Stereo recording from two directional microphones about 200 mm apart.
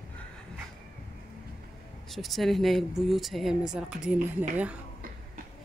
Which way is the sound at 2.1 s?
Centre (ahead or behind).